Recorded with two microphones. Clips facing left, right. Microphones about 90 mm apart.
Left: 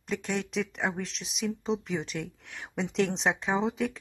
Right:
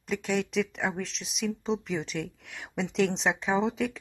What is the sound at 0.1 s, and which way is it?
Speech, centre (ahead or behind).